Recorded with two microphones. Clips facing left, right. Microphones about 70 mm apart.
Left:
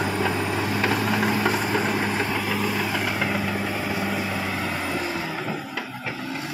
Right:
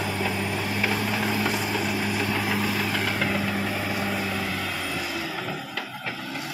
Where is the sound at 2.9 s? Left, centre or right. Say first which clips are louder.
Left 1 dB; centre.